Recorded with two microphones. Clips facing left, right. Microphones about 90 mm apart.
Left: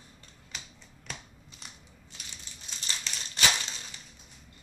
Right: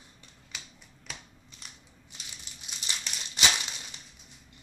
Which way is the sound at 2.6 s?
15° right (ahead or behind).